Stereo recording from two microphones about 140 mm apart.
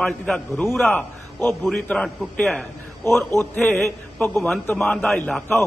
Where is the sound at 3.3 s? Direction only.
15° left (ahead or behind).